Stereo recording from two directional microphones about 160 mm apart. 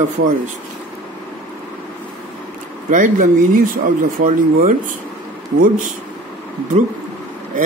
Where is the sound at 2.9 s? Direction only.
55° right (ahead or behind).